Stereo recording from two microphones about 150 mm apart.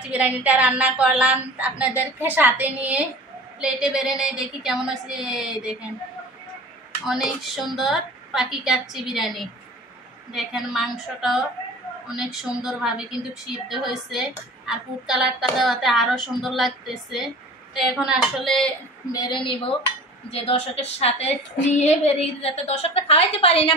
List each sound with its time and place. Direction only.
0.1 s a woman's voice: 10° right (ahead or behind)
7.1 s a woman's voice: 5° right (ahead or behind)
19.1 s a woman's voice: 30° left (ahead or behind)